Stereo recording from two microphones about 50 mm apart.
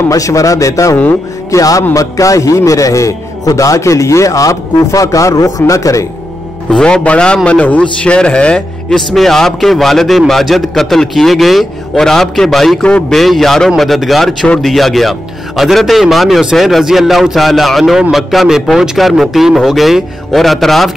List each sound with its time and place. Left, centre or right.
0.2 s a man's voice: left
6.7 s speech: centre
8.9 s a man's voice: centre